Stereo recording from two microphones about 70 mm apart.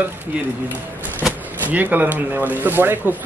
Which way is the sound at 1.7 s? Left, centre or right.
Right.